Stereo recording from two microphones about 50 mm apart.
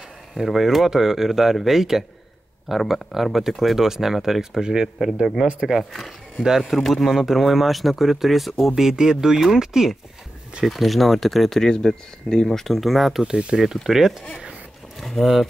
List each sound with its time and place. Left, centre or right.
0.3 s speech: centre
13.2 s speech: centre